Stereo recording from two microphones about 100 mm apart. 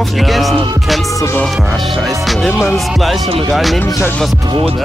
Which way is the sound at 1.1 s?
30° left (ahead or behind).